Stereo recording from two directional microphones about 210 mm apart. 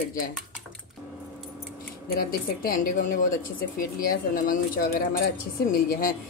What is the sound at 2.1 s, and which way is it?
Speech, 45° left (ahead or behind).